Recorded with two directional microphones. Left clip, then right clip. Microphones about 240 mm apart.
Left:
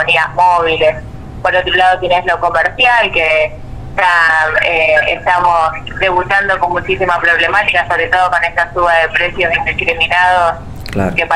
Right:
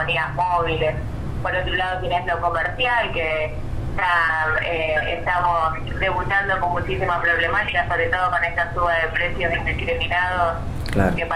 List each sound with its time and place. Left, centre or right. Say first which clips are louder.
0.0 s speech: left 11 dB; left